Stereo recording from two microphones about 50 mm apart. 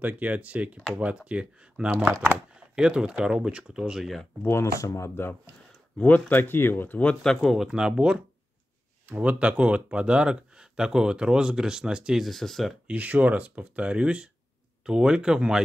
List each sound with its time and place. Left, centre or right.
0.0 s speech: right; by 4.1 s centre
4.5 s speech: left
5.9 s speech: left
7.5 s speech: centre
9.0 s speech: right; by 12.2 s centre
12.2 s speech: centre
12.8 s speech: right